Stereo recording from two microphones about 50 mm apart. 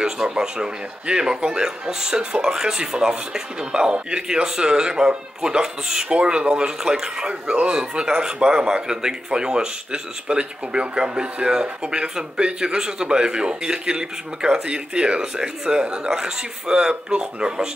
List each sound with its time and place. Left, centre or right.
0.0 s speech: centre